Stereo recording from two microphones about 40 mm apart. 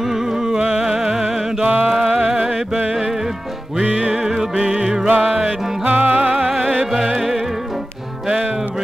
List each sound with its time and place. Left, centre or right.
0.0 s music: centre
1.6 s music: right
2.0 s music: centre
5.0 s music: right
6.5 s music: centre